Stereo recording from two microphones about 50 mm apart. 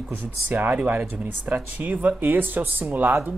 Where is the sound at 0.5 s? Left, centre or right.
Right.